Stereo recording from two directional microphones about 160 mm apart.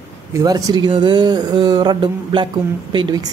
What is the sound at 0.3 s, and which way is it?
Speech, 20° right (ahead or behind).